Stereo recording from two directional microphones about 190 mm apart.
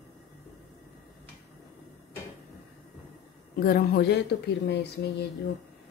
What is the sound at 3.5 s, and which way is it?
Speech, 55° left (ahead or behind).